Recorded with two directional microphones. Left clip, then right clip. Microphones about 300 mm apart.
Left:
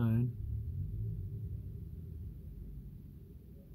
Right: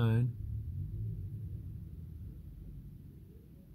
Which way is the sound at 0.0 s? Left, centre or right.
Right.